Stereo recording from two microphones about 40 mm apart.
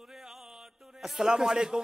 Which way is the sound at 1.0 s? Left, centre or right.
Centre.